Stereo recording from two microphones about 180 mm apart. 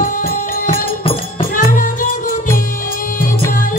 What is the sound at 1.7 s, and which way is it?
Music, 50° left (ahead or behind).